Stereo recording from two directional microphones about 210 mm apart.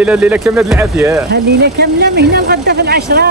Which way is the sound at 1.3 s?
50° right (ahead or behind).